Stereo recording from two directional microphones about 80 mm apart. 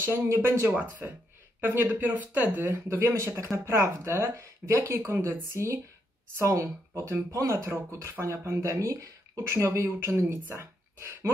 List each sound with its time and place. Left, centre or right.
0.0 s speech: right